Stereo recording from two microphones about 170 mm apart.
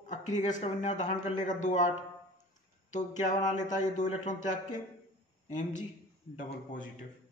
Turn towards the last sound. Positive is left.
turn(degrees=50)  # may be behind; listen again after turning